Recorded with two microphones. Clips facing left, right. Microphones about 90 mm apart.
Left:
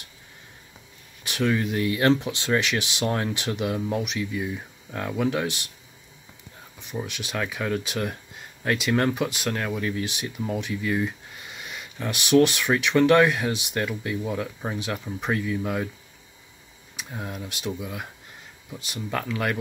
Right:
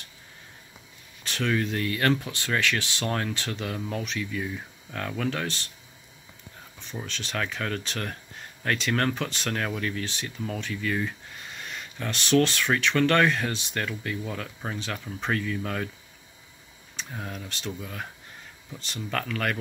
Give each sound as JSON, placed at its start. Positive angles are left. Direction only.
{"t": 1.2, "sound": "speech", "side_deg": 15}
{"t": 6.8, "sound": "speech", "side_deg": 15}
{"t": 16.9, "sound": "speech", "side_deg": 10}